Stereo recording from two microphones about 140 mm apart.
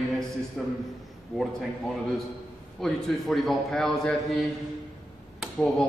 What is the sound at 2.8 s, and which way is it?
A man's voice, centre (ahead or behind).